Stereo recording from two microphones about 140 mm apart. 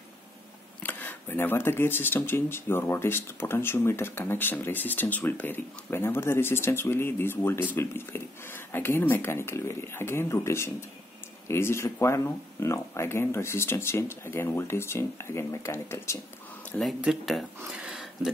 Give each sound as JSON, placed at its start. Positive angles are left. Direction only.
{"t": 0.8, "sound": "speech", "side_deg": 15}
{"t": 17.0, "sound": "speech", "side_deg": 0}
{"t": 17.6, "sound": "a sound", "side_deg": -5}